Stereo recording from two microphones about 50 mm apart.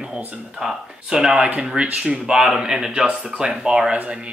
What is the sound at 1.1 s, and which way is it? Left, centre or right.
Speech, centre.